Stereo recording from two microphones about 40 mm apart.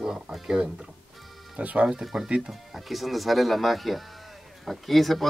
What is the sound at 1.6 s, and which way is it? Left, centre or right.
Speech, right.